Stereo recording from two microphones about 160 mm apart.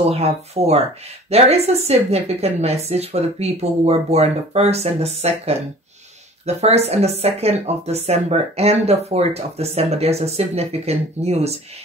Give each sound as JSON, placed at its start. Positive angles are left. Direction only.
{"t": 0.1, "sound": "speech", "side_deg": -40}